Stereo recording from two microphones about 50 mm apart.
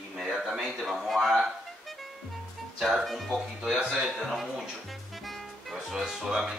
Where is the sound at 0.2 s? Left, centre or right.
Centre.